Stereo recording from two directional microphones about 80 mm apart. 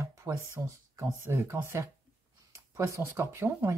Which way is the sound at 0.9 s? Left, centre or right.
Right.